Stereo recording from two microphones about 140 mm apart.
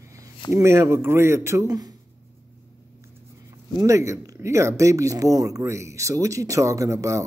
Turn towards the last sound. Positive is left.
turn(degrees=-20)  # may be behind; listen again after turning